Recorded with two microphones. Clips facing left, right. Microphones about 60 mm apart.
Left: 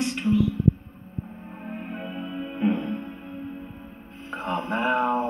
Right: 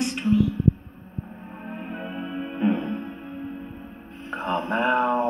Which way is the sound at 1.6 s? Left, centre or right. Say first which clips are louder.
Right 1 dB; centre.